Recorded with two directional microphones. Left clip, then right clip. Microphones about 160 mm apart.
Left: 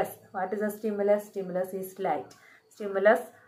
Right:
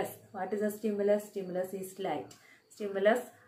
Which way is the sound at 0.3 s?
15° right (ahead or behind).